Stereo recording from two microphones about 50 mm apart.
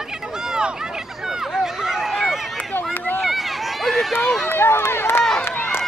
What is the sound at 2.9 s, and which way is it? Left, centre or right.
Run, left.